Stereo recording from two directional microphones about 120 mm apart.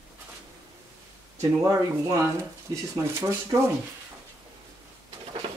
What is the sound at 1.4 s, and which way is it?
Speech, 25° right (ahead or behind).